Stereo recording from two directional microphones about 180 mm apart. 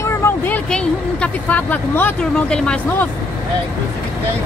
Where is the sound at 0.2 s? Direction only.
10° left (ahead or behind).